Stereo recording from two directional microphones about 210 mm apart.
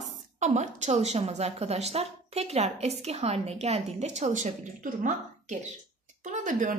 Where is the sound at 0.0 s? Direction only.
35° right (ahead or behind).